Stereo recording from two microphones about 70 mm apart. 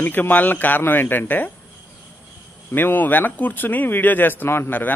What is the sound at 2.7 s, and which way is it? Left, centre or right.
Speech, left.